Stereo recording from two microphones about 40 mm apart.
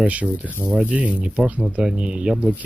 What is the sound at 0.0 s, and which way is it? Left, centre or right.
Speech, right.